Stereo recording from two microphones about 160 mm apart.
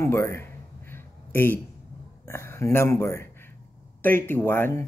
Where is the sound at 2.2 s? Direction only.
15° left (ahead or behind).